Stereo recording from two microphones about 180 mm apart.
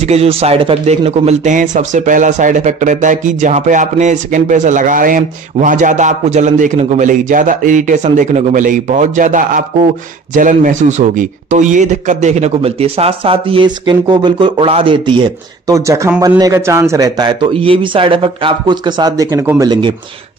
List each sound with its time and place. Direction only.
0.0 s a man's voice: 35° right (ahead or behind); by 19.7 s 15° right (ahead or behind)